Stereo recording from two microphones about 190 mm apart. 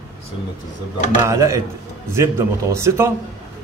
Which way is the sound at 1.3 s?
15° right (ahead or behind).